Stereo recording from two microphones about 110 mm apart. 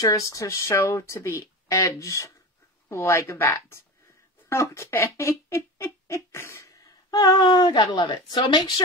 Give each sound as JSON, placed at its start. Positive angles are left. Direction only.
{"t": 0.0, "sound": "speech", "side_deg": 30}
{"t": 7.1, "sound": "a woman's voice", "side_deg": 40}